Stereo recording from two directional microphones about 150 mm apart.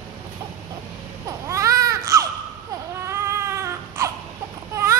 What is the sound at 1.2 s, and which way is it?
Baby cry, 20° right (ahead or behind).